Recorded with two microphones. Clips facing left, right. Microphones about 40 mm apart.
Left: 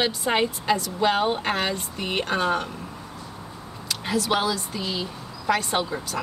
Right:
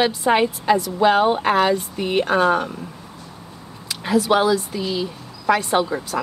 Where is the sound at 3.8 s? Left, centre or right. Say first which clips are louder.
Right 6 dB; centre.